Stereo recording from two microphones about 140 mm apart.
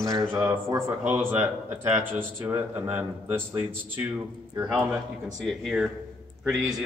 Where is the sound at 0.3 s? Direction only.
20° right (ahead or behind).